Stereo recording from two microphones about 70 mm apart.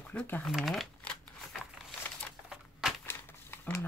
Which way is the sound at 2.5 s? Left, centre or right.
Centre.